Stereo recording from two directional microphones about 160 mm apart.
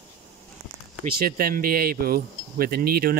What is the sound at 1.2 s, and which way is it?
Speech, 65° right (ahead or behind).